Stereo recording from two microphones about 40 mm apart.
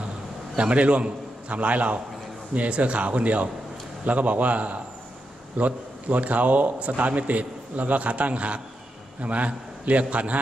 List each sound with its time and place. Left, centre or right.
0.6 s a man's voice: right